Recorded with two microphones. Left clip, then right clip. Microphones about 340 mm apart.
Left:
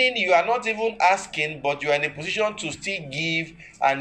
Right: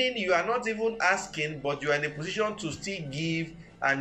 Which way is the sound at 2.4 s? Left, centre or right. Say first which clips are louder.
Left 5 dB; left.